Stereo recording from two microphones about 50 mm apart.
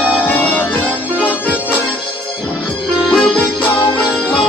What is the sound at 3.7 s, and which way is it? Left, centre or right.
Music, left.